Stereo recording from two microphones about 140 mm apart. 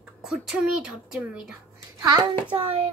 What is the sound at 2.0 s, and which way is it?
Speech, 30° right (ahead or behind).